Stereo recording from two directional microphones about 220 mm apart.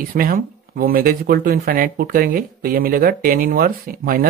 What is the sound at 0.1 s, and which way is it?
Speech, 40° right (ahead or behind).